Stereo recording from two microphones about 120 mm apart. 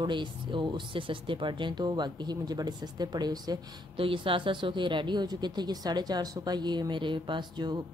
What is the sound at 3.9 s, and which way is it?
Speech, 45° right (ahead or behind).